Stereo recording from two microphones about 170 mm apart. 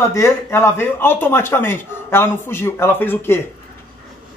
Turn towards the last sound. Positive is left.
turn(degrees=15)  # may be behind; listen again after turning